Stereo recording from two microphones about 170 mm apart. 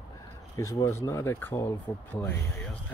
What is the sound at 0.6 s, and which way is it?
Speech, 20° left (ahead or behind).